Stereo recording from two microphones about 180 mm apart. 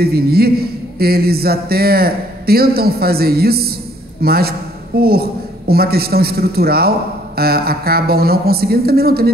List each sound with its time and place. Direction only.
0.0 s a man's voice: 60° right (ahead or behind)